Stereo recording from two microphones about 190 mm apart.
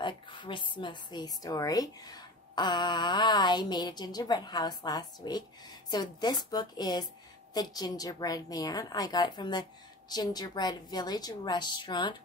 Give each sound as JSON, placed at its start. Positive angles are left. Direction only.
{"t": 0.0, "sound": "a woman's voice", "side_deg": 25}